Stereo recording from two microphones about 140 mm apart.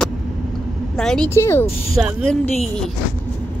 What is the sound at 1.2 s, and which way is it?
Speech, 20° left (ahead or behind).